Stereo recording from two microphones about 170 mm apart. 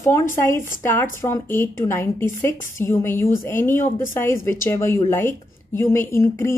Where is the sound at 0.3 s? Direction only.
15° left (ahead or behind).